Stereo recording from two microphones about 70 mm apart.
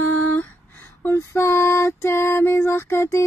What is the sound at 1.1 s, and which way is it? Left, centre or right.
Female singing, left.